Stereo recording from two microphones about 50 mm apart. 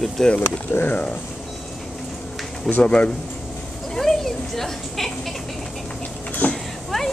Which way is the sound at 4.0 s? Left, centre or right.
Centre.